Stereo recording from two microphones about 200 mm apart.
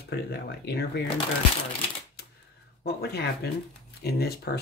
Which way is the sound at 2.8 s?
55° left (ahead or behind).